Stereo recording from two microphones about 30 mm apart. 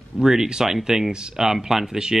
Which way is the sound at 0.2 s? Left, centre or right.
Centre.